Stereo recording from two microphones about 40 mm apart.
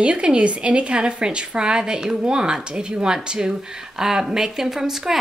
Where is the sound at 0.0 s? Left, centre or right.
Right.